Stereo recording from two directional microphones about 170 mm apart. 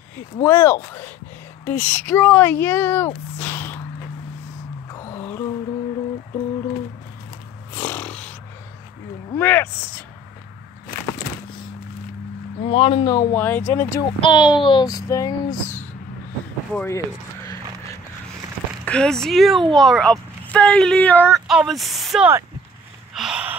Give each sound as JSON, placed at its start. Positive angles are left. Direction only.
{"t": 0.4, "sound": "speech", "side_deg": 15}
{"t": 3.3, "sound": "a sound", "side_deg": 10}
{"t": 4.9, "sound": "a sound", "side_deg": 15}
{"t": 7.7, "sound": "a sound", "side_deg": 10}
{"t": 12.6, "sound": "speech", "side_deg": 30}
{"t": 14.2, "sound": "speech", "side_deg": 30}
{"t": 18.9, "sound": "speech", "side_deg": 5}
{"t": 21.5, "sound": "speech", "side_deg": 0}
{"t": 23.1, "sound": "gasp", "side_deg": -5}